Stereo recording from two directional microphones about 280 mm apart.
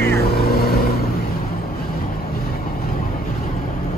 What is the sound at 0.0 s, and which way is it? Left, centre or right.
Vehicle, left.